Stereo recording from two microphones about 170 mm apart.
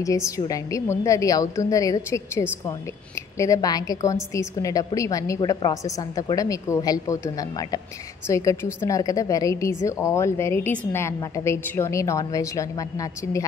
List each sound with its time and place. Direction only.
0.0 s a woman's voice: 20° left (ahead or behind)